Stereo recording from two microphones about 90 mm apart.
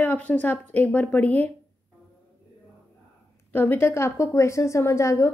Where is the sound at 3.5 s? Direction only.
20° left (ahead or behind).